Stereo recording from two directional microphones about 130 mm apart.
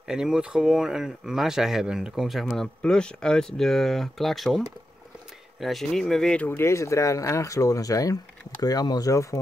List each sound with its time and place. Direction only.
0.0 s speech: 5° right (ahead or behind); by 9.4 s 25° left (ahead or behind)